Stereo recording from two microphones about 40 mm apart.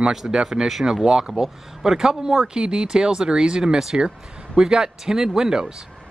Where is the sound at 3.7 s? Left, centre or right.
Centre.